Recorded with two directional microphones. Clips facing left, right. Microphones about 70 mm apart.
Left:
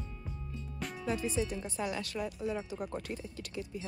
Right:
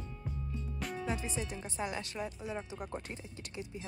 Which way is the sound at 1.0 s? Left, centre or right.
Right.